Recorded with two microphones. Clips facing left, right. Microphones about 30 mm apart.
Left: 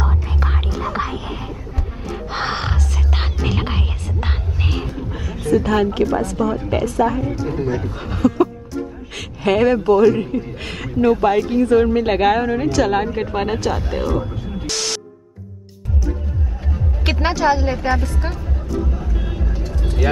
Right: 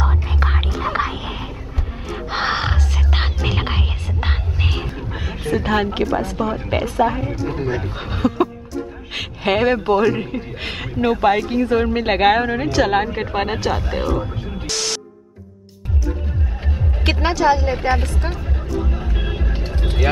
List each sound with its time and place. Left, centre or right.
0.0 s whispering: right
0.9 s a sound: centre
2.2 s music: centre
5.1 s a sound: right
6.2 s a man's voice: right
14.3 s music: right
14.7 s music: centre
17.2 s speech: centre
18.8 s music: right